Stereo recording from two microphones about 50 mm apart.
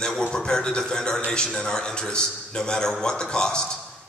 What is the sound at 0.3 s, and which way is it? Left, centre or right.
A man's voice, centre.